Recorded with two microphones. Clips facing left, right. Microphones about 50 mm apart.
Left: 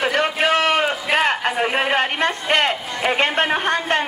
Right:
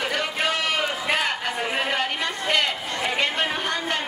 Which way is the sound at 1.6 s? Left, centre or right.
Left.